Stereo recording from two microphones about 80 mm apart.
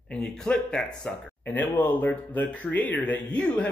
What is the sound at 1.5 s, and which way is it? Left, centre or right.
Speech, left.